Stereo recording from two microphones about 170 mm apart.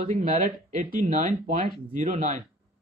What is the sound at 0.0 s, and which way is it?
Speech, 50° right (ahead or behind).